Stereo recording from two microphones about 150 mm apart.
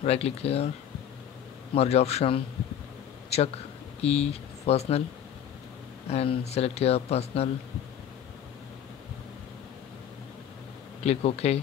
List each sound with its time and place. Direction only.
0.0 s speech: 45° left (ahead or behind)
1.8 s speech: 45° left (ahead or behind)
6.0 s speech: 40° left (ahead or behind)
11.1 s speech: 45° left (ahead or behind)